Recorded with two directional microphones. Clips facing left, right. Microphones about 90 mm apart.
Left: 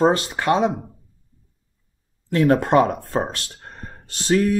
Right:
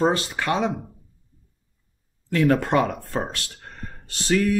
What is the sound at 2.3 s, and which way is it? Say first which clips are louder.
Speech: left 3 dB; 30° left (ahead or behind).